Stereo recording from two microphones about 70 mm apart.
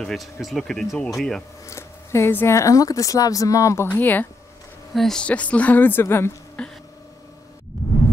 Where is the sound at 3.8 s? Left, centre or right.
Left.